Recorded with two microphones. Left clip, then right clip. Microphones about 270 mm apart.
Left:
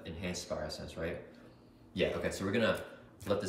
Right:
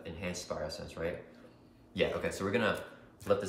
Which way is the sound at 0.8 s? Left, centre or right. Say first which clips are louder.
Right 2 dB; centre.